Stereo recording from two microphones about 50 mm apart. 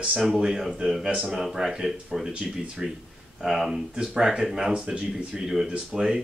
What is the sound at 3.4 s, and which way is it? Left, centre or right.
Speech, centre.